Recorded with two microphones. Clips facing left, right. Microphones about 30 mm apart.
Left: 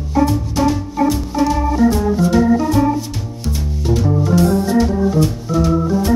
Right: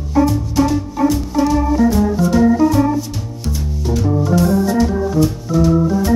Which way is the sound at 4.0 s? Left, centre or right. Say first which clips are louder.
Even; centre.